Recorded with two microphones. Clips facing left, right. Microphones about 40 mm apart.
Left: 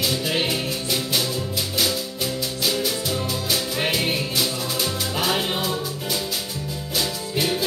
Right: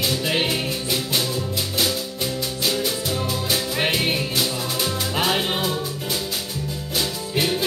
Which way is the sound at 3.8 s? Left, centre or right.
Centre.